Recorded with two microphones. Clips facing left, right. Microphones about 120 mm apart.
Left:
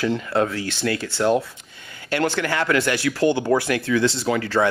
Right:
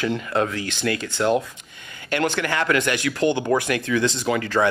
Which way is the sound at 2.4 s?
20° right (ahead or behind).